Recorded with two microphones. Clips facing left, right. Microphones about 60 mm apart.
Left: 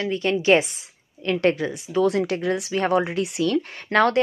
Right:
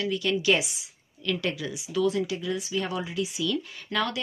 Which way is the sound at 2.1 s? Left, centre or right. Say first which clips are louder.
Left 5 dB; left.